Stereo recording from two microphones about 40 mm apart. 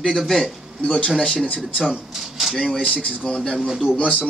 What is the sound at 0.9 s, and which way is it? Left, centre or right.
Speech, left.